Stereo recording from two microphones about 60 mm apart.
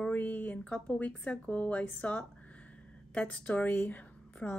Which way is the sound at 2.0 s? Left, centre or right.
Left.